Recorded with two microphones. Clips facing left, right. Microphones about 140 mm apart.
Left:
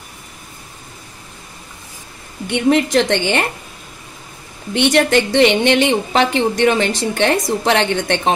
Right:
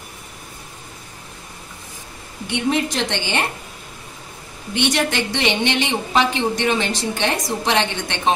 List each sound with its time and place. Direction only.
2.5 s a woman's voice: 55° left (ahead or behind)
4.7 s a woman's voice: 55° left (ahead or behind)